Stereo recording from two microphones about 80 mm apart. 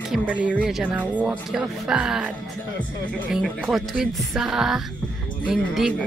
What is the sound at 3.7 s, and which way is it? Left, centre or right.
Speech, centre.